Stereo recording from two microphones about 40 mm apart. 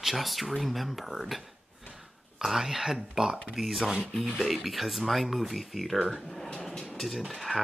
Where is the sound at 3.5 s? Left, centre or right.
Centre.